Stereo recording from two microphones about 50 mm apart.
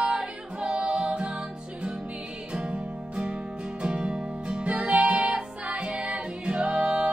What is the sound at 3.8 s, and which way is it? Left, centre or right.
Music, centre.